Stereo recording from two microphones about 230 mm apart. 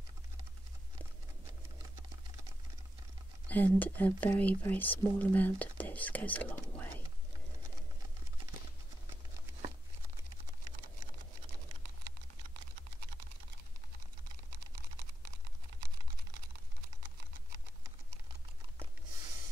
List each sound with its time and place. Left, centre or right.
3.4 s speech: centre